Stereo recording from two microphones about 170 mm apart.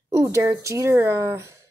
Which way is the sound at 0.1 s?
20° right (ahead or behind).